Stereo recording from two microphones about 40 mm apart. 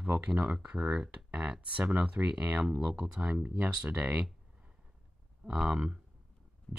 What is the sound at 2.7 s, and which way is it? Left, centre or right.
Speech, right.